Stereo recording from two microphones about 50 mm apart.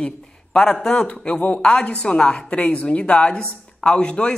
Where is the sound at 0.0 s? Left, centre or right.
Centre.